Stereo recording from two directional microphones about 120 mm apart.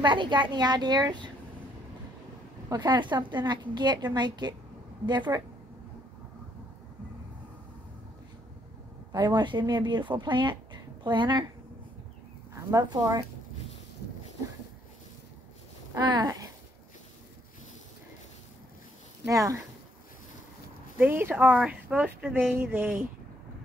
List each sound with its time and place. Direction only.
0.0 s a woman's voice: 40° right (ahead or behind)
2.7 s a woman's voice: 35° right (ahead or behind)
9.1 s speech: 35° right (ahead or behind)
12.5 s a woman's voice: 35° right (ahead or behind)
15.9 s a woman's voice: 35° right (ahead or behind)
19.2 s speech: 30° right (ahead or behind)
21.0 s speech: 15° right (ahead or behind)